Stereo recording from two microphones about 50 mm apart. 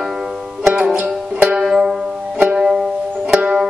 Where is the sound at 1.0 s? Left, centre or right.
Right.